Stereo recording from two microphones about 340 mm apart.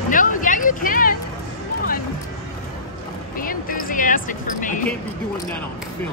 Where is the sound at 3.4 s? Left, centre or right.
Left.